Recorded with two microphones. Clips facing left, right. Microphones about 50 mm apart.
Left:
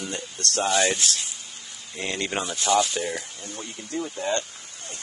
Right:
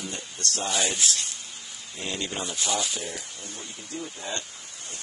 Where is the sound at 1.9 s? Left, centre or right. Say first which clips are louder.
Left 4 dB; left.